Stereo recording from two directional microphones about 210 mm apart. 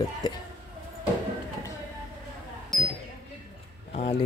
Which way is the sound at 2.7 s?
Centre (ahead or behind).